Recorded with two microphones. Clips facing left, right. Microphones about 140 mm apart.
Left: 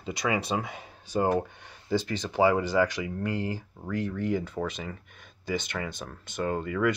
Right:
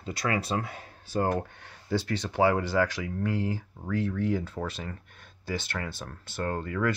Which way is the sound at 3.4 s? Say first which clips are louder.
Right 1 dB; 10° left (ahead or behind).